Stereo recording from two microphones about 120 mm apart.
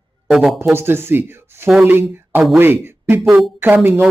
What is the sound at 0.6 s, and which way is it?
Speech, 20° right (ahead or behind).